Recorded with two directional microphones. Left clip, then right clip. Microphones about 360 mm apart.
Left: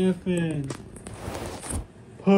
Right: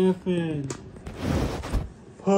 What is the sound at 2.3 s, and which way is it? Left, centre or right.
Speech, centre.